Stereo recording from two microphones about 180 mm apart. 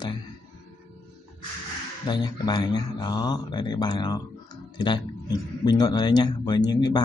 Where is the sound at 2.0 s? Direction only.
25° left (ahead or behind).